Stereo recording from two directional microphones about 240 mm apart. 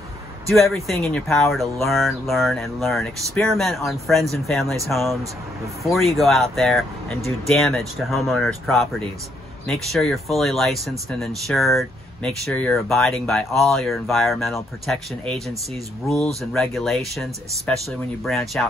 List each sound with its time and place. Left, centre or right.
0.5 s speech: centre
16.5 s speech: centre